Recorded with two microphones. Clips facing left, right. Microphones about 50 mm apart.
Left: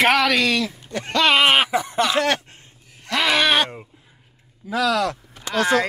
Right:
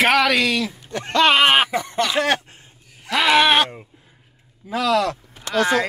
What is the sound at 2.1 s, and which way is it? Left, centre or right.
Speech, centre.